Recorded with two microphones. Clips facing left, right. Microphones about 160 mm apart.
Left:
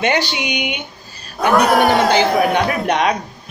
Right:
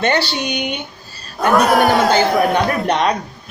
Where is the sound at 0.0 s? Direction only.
15° left (ahead or behind).